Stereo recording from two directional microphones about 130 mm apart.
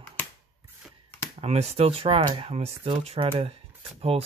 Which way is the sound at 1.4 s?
55° right (ahead or behind).